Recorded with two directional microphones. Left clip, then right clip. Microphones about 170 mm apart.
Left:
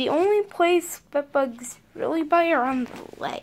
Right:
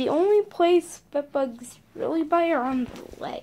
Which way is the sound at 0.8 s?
Centre (ahead or behind).